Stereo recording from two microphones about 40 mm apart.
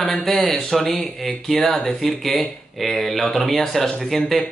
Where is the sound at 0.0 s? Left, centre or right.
Centre.